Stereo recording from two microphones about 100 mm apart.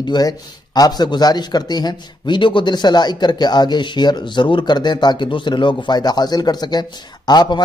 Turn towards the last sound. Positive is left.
turn(degrees=45)  # may be behind; listen again after turning